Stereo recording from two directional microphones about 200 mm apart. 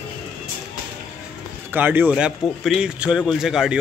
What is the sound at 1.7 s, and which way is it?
A man's voice, 10° right (ahead or behind).